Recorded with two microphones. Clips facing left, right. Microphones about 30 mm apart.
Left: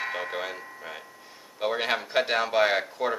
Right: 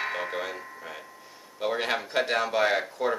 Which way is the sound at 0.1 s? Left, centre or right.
Centre.